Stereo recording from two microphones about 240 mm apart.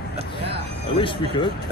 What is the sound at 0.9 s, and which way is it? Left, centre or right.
Speech, left.